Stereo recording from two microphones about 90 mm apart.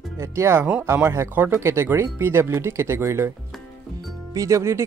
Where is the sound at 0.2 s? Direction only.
30° right (ahead or behind).